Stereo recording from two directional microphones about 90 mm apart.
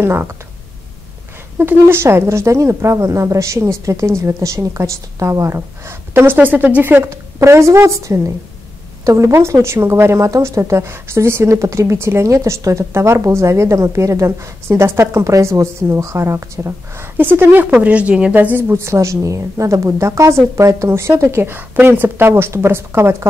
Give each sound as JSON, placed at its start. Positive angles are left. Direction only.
{"t": 0.0, "sound": "speech", "side_deg": -25}
{"t": 1.6, "sound": "speech", "side_deg": -25}